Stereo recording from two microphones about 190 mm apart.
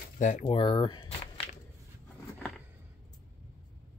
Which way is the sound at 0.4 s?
30° left (ahead or behind).